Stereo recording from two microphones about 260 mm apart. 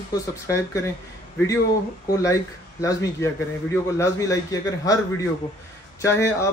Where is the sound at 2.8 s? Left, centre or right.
Centre.